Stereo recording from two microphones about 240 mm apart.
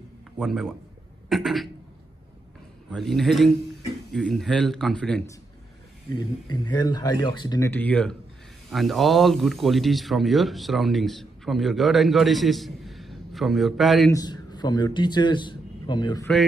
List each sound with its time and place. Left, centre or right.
0.4 s a man's voice: centre
2.9 s a man's voice: centre
14.1 s a man's voice: centre